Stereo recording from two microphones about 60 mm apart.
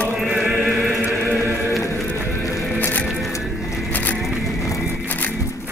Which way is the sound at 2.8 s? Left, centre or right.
Left.